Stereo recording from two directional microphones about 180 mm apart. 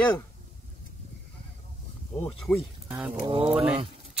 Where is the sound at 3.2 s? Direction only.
30° right (ahead or behind).